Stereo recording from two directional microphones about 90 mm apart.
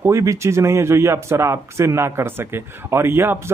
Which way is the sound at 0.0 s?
35° right (ahead or behind).